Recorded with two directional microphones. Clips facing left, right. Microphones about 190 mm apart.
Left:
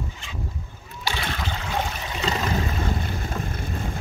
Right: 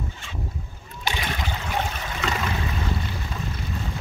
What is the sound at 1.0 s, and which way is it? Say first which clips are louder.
Splash: even; 15° right (ahead or behind).